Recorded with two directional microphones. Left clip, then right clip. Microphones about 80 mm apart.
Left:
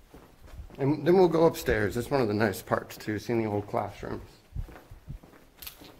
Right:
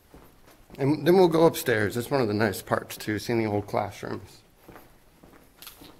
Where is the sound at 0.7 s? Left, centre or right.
Right.